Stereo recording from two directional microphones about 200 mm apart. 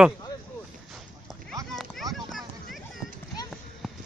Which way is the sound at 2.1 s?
Centre (ahead or behind).